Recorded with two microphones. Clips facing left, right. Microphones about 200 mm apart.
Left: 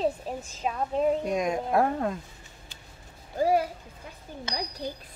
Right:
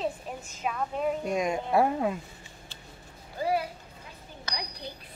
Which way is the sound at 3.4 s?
45° left (ahead or behind).